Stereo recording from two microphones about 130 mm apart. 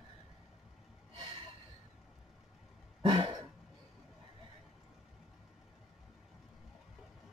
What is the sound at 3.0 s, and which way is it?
Throat clearing, 40° right (ahead or behind).